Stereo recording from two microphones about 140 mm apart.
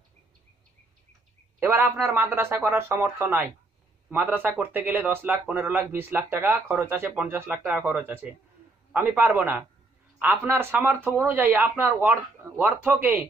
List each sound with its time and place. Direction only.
1.6 s speech: 15° right (ahead or behind)